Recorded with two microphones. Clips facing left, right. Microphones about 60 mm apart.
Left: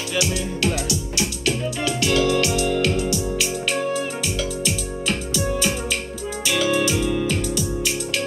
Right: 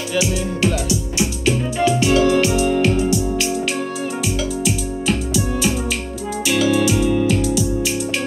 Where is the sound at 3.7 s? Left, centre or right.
Centre.